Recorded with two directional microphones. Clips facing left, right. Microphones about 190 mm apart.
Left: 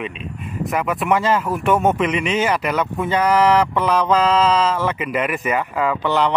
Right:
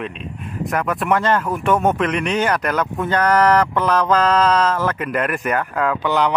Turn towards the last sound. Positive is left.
turn(degrees=0)  # may be behind; listen again after turning